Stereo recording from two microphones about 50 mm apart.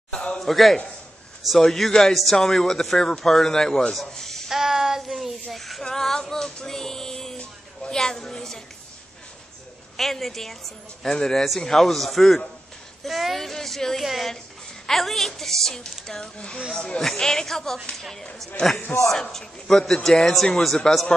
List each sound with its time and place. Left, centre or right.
0.1 s a sound: centre
0.4 s a woman's voice: centre
4.1 s a sound: centre
4.5 s child singing: centre
5.5 s female singing: centre
7.9 s a woman's voice: centre
9.9 s a woman's voice: centre
16.3 s speech: left
17.0 s speech: centre
19.0 s a woman's voice: centre